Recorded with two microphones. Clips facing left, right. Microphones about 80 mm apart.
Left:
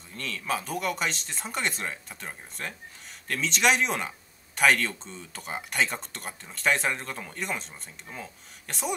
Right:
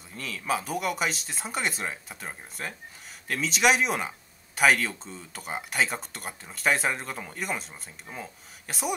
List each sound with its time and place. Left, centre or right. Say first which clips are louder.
0.1 s speech: right 1 dB; centre